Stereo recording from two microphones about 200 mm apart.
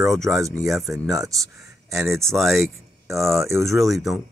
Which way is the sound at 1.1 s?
15° right (ahead or behind).